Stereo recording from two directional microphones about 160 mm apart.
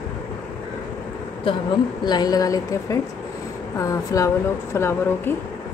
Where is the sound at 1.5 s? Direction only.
35° left (ahead or behind).